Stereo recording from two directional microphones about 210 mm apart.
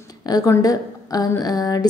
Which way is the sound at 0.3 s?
15° left (ahead or behind).